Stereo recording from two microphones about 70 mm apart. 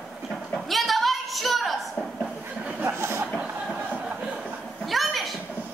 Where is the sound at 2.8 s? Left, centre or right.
Right.